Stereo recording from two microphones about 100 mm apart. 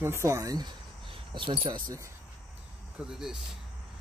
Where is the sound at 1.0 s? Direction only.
60° right (ahead or behind).